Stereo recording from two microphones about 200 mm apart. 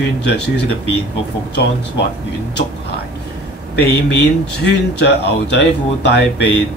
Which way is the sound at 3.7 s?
55° left (ahead or behind).